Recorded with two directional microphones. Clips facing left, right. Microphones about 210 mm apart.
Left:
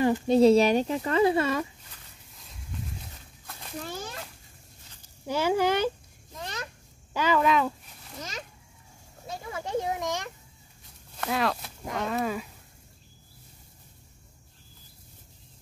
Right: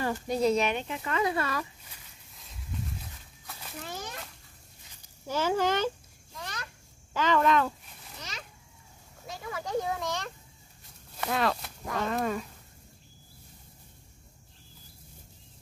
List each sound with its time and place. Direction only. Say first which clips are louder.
0.0 s speech: left 8 dB; 20° left (ahead or behind)
2.3 s livestock: right 1 dB; centre (ahead or behind)
5.2 s speech: left 3 dB; 15° left (ahead or behind)
6.3 s a sound: left 4 dB; 20° left (ahead or behind)
7.2 s speech: left 1 dB; 5° left (ahead or behind)
8.2 s a child's voice: left 6 dB; 45° left (ahead or behind)
9.3 s speech: left 1 dB; 25° left (ahead or behind)
11.1 s speech: left 1 dB; centre (ahead or behind)